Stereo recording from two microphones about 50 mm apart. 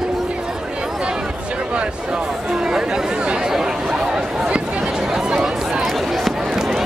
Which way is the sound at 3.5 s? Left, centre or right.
Centre.